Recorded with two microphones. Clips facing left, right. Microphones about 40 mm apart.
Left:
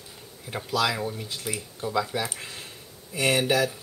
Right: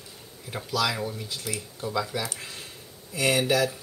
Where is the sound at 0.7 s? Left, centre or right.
Centre.